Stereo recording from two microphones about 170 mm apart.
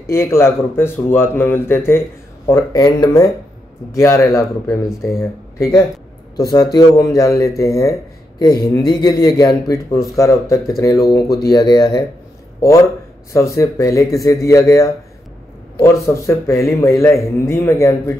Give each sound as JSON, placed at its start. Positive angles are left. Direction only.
{"t": 0.1, "sound": "speech", "side_deg": 15}